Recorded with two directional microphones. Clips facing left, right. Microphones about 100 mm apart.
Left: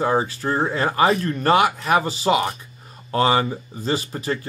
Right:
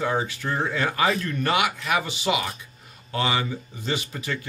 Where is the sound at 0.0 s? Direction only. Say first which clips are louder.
Left 5 dB; 35° left (ahead or behind).